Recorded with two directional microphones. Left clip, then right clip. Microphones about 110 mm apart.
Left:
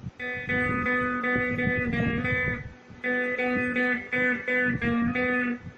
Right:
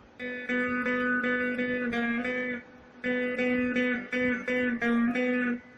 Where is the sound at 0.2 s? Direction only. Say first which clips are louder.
Left 3 dB; 35° left (ahead or behind).